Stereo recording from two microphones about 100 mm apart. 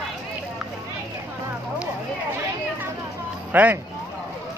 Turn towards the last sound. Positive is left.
turn(degrees=-15)  # may be behind; listen again after turning